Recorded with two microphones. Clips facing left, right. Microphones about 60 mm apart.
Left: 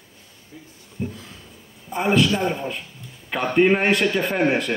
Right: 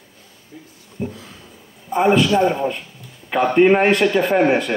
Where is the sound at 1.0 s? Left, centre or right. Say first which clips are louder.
Right 3 dB; centre.